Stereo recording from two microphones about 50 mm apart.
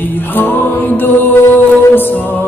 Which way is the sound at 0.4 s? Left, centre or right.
Left.